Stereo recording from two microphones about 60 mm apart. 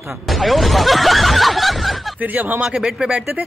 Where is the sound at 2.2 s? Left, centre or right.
Right.